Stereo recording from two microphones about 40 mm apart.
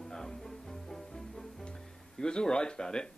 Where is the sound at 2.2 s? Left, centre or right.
Centre.